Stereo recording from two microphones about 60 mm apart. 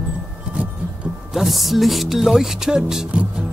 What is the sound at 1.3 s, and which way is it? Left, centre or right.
Speech, centre.